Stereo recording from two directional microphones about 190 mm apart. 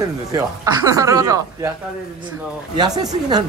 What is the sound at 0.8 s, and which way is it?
Speech, 15° right (ahead or behind).